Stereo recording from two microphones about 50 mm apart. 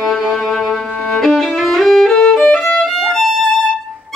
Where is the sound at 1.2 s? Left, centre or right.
Centre.